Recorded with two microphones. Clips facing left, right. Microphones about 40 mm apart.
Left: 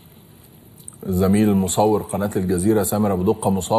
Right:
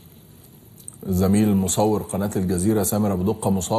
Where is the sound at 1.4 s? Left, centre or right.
Centre.